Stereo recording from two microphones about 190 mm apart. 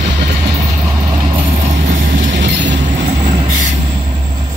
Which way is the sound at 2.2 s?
70° right (ahead or behind).